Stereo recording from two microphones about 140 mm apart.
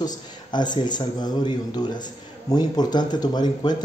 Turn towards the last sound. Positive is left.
turn(degrees=30)  # may be behind; listen again after turning